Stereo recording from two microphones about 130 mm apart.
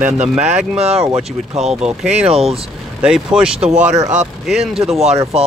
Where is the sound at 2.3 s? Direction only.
50° right (ahead or behind).